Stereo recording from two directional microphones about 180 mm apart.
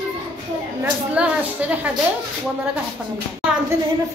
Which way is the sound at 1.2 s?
5° right (ahead or behind).